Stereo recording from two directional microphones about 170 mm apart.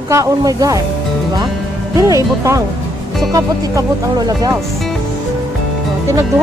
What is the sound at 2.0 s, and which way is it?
Speech, 20° right (ahead or behind).